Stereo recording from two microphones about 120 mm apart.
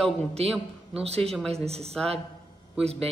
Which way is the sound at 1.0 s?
60° right (ahead or behind).